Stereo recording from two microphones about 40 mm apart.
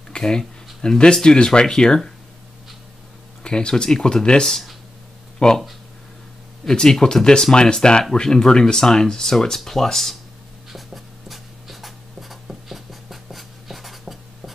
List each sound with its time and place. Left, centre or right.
0.1 s speech: centre
3.4 s speech: left
6.7 s speech: centre
10.7 s writing: centre